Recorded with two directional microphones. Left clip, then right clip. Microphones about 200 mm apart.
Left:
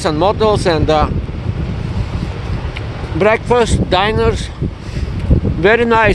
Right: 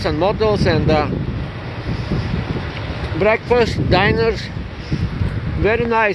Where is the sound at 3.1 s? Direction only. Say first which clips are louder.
Left 3 dB; 30° left (ahead or behind).